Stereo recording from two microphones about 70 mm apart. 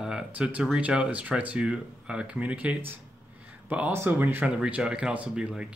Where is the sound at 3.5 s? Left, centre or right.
Right.